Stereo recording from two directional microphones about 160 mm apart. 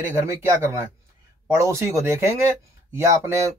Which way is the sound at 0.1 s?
15° right (ahead or behind).